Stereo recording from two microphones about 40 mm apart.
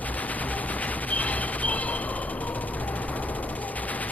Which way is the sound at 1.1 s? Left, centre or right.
Left.